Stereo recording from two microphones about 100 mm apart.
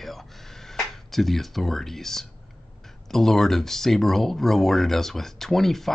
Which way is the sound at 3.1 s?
5° left (ahead or behind).